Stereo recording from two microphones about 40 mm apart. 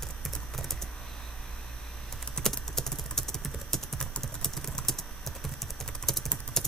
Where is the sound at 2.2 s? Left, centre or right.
Centre.